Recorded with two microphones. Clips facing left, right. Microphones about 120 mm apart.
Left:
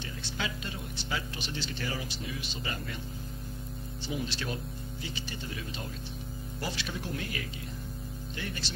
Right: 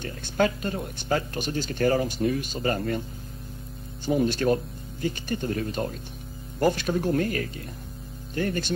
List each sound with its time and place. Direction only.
0.0 s speech: 50° right (ahead or behind)
4.0 s speech: 50° right (ahead or behind)